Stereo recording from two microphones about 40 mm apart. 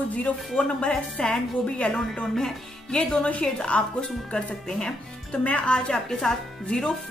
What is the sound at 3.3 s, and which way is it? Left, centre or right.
A woman's voice, left.